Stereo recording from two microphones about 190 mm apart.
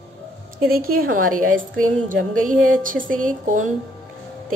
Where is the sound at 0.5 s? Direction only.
50° right (ahead or behind).